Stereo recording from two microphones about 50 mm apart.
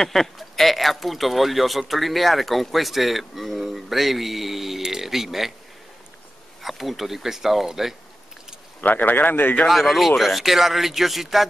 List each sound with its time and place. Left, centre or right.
0.0 s speech: centre
6.6 s speech: centre
8.8 s speech: left
9.7 s speech: centre